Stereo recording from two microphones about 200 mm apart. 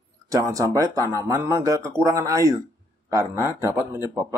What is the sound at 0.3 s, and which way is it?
Speech, 15° right (ahead or behind).